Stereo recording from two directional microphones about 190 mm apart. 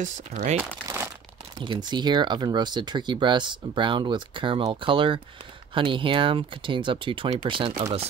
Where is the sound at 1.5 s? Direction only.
25° right (ahead or behind).